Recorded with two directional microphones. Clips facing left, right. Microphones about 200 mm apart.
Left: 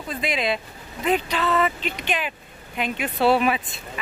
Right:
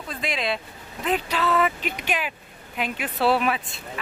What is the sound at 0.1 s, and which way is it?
Speech, centre (ahead or behind).